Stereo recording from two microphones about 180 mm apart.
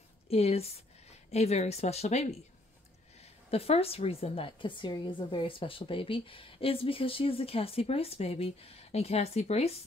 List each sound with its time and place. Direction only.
0.3 s a woman's voice: 35° left (ahead or behind)
3.4 s a woman's voice: 35° left (ahead or behind)